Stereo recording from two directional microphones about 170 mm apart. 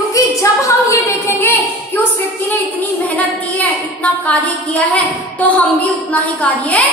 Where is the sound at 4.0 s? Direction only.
10° left (ahead or behind).